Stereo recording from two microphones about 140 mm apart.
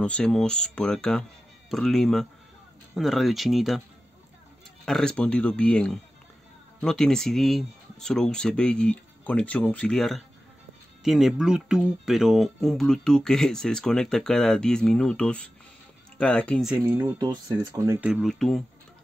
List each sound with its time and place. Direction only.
0.0 s speech: 5° left (ahead or behind)
4.8 s speech: 5° left (ahead or behind)
16.8 s speech: 15° right (ahead or behind)
17.2 s speech: 25° right (ahead or behind)
18.0 s speech: 5° right (ahead or behind)